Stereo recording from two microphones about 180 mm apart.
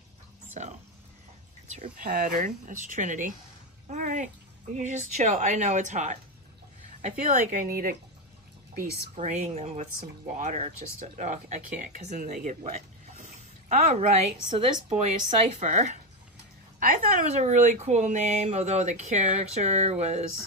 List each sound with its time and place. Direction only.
1.7 s speech: 45° right (ahead or behind)
9.1 s speech: 40° right (ahead or behind)
17.4 s speech: 40° right (ahead or behind)